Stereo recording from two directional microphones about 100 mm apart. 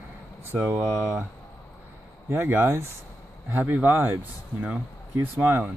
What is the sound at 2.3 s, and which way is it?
Speech, 20° right (ahead or behind).